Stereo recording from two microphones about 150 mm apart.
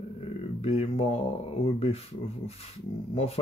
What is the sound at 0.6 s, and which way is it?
Speech, 45° left (ahead or behind).